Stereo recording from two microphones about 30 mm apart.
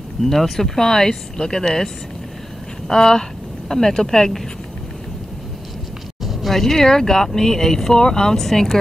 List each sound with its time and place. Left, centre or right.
0.2 s speech: centre
2.9 s speech: centre
6.5 s speech: centre